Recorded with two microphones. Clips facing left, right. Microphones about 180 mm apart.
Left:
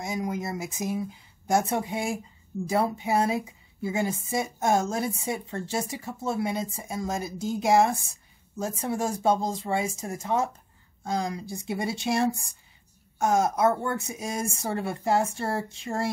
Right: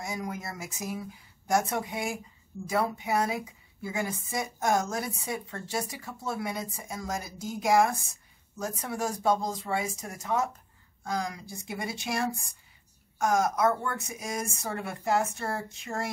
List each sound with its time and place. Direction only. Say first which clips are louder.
0.0 s a woman's voice: left 5 dB; 20° left (ahead or behind)